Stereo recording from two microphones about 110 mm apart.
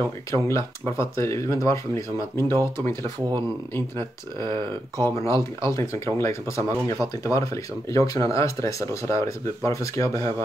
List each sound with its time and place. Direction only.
0.3 s speech: 25° left (ahead or behind)
3.0 s speech: 40° right (ahead or behind)
5.0 s speech: 25° left (ahead or behind)